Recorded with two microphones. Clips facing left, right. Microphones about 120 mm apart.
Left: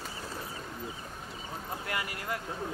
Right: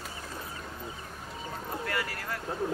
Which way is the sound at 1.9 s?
20° left (ahead or behind).